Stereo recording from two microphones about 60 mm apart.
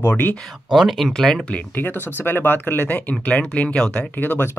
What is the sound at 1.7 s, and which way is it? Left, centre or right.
Speech, left.